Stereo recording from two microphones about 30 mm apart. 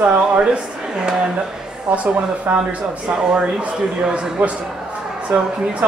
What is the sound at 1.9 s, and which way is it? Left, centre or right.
Speech, right.